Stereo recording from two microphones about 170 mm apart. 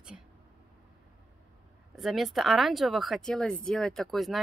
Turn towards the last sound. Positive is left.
turn(degrees=0)  # may be behind; listen again after turning